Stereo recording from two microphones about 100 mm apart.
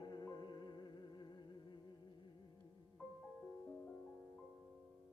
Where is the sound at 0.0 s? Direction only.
45° left (ahead or behind).